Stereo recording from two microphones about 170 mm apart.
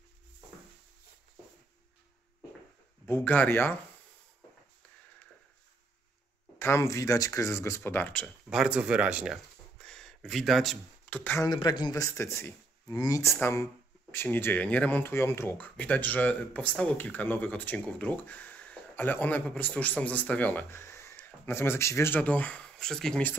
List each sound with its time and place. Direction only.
3.1 s speech: 10° left (ahead or behind)
6.6 s speech: 15° left (ahead or behind)
11.5 s speech: 25° left (ahead or behind); by 23.3 s 5° left (ahead or behind)